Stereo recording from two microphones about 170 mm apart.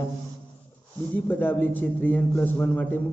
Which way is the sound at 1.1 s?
10° left (ahead or behind).